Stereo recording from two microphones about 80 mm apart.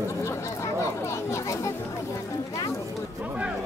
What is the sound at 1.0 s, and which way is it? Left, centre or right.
Speech, left.